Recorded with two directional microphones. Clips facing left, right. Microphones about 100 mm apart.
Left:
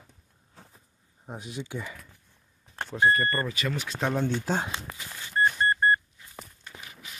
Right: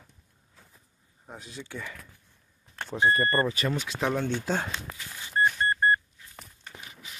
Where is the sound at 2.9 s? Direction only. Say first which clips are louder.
Even; 25° right (ahead or behind).